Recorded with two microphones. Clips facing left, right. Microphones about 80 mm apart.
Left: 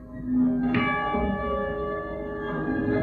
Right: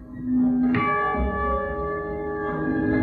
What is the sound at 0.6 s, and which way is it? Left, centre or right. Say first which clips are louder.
Singing bowl: right 3 dB; right.